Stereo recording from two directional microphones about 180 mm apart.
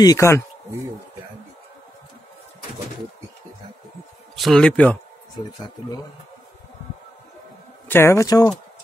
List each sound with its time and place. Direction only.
0.0 s speech: 15° left (ahead or behind)
4.4 s speech: centre (ahead or behind)
7.9 s speech: 15° left (ahead or behind)